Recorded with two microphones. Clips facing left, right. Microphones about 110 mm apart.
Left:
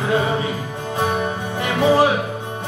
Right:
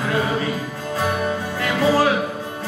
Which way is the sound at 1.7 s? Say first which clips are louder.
Left 2 dB; 20° left (ahead or behind).